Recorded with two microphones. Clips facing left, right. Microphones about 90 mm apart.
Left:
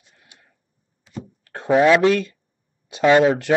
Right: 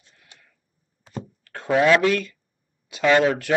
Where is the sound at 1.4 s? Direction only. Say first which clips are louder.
Left 3 dB; 30° left (ahead or behind).